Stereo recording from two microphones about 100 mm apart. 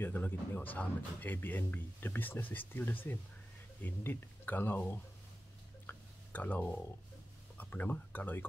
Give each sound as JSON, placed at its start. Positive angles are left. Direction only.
{"t": 0.0, "sound": "speech", "side_deg": 20}
{"t": 5.9, "sound": "a sound", "side_deg": 20}
{"t": 7.5, "sound": "speech", "side_deg": 15}